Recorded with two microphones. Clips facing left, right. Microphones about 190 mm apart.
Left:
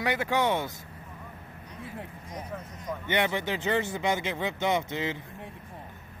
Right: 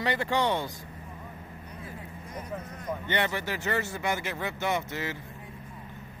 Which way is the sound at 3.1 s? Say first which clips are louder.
Left 3 dB; 15° left (ahead or behind).